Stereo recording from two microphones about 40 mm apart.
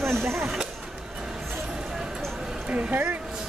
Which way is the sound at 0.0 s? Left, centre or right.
Right.